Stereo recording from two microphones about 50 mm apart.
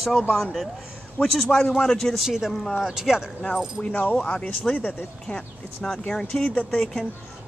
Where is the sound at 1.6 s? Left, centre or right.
Left.